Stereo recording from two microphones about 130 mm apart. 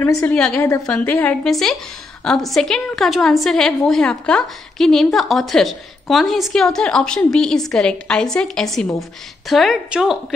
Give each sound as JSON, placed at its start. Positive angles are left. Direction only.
{"t": 0.0, "sound": "a woman's voice", "side_deg": 20}
{"t": 0.3, "sound": "a woman's voice", "side_deg": 10}